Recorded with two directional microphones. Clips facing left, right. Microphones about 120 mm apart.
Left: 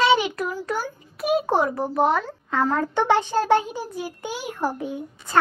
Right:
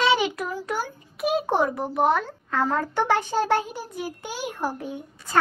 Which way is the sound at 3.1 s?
20° left (ahead or behind).